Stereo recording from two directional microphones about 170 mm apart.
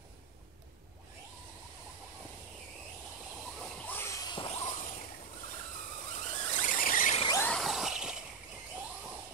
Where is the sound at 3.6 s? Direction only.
10° left (ahead or behind); by 4.6 s 30° left (ahead or behind).